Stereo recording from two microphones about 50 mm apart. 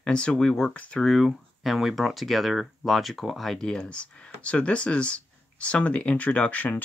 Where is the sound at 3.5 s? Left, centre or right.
Centre.